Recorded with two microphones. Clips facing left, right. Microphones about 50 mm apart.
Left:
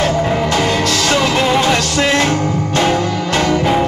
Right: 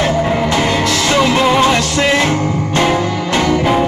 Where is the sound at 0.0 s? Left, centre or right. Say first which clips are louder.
Right 1 dB; centre.